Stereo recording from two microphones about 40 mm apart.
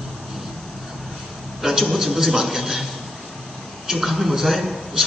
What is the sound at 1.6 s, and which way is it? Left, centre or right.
A man's voice, centre.